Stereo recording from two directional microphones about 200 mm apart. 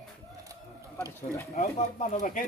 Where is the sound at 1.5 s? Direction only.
35° left (ahead or behind).